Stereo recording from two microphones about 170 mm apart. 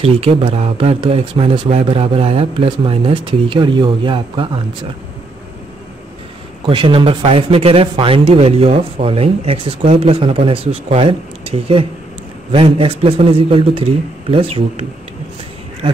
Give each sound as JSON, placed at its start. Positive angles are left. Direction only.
{"t": 0.0, "sound": "speech", "side_deg": -35}
{"t": 6.6, "sound": "speech", "side_deg": -30}